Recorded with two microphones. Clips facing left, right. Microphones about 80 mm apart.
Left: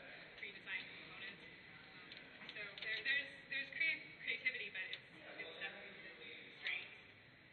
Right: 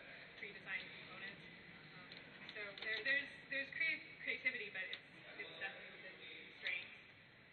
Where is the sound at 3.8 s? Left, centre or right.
Centre.